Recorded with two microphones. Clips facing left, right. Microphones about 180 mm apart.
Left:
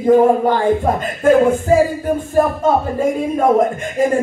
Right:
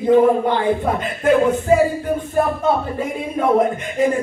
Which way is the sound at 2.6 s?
45° left (ahead or behind).